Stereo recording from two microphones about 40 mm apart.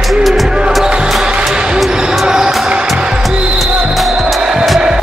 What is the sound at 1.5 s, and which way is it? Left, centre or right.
Basketball bounce, centre.